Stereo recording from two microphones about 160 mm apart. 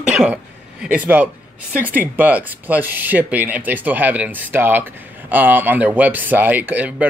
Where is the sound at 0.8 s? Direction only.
10° right (ahead or behind).